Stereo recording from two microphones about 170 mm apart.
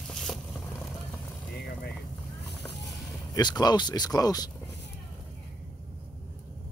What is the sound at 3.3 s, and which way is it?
Speech, 25° left (ahead or behind).